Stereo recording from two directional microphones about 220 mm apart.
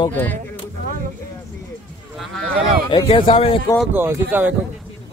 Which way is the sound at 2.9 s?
25° left (ahead or behind).